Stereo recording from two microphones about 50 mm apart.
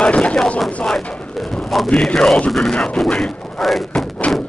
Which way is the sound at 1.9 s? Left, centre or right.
Centre.